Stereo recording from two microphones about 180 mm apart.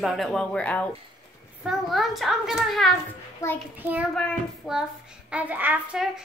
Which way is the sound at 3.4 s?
15° left (ahead or behind).